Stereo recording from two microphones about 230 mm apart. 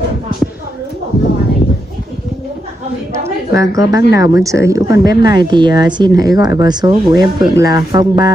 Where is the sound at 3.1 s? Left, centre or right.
Centre.